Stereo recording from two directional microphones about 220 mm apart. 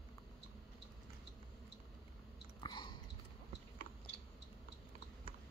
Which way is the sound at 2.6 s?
20° left (ahead or behind).